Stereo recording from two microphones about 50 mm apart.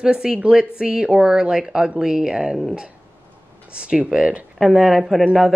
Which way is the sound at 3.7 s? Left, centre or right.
Right.